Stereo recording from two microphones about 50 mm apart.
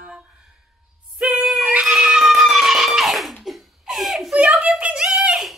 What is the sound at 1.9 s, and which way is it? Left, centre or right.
Music, centre.